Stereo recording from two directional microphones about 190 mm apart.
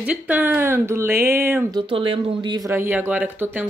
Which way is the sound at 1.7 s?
25° right (ahead or behind).